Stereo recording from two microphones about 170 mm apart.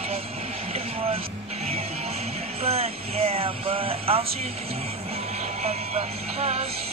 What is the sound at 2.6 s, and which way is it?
A woman's voice, 35° right (ahead or behind).